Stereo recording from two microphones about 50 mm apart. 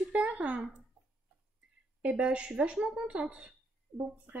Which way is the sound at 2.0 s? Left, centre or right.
Right.